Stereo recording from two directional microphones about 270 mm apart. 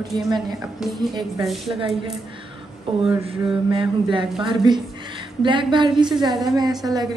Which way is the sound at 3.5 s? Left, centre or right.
Centre.